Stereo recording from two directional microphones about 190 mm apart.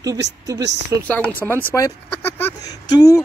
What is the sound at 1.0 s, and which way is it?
Speech, 10° left (ahead or behind).